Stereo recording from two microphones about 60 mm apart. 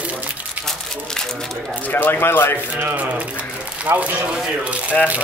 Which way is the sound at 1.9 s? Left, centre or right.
Left.